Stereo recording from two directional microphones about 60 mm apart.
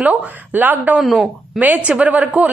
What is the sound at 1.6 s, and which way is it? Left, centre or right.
Speech, right.